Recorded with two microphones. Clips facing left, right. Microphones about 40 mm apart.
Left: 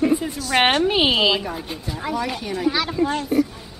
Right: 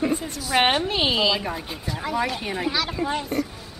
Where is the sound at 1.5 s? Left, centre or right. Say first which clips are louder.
Left 1 dB; centre.